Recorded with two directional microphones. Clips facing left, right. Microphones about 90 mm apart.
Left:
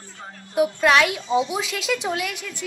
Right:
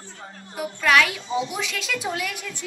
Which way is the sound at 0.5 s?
20° left (ahead or behind).